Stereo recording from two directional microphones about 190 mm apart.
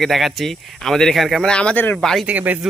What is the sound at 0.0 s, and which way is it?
Speech, centre (ahead or behind).